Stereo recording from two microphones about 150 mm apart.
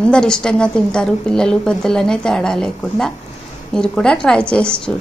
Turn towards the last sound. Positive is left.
turn(degrees=5)  # may be behind; listen again after turning